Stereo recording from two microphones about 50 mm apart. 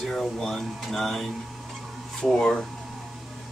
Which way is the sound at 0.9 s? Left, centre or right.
Centre.